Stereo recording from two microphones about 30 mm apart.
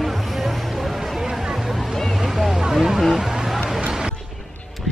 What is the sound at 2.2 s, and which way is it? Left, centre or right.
Boat, centre.